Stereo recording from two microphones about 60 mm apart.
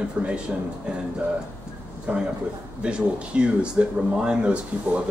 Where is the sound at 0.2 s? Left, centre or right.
Centre.